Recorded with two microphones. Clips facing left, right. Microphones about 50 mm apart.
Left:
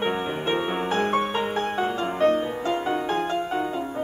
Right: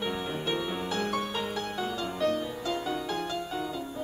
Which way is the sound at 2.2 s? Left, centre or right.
Left.